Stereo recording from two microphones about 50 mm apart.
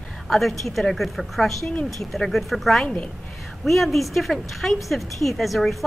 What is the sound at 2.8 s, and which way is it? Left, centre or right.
Speech, left.